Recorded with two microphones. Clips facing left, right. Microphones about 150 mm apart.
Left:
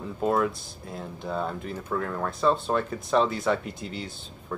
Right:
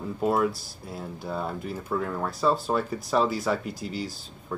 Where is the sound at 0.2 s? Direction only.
5° right (ahead or behind).